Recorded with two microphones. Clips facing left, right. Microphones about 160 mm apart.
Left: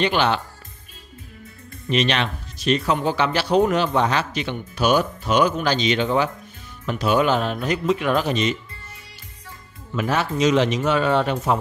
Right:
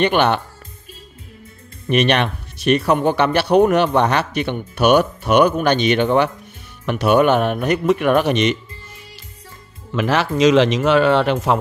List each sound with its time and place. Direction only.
0.0 s speech: 55° right (ahead or behind)
1.9 s speech: 60° right (ahead or behind)
9.9 s speech: 90° right